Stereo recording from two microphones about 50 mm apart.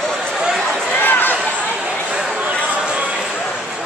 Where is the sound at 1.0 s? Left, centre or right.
Left.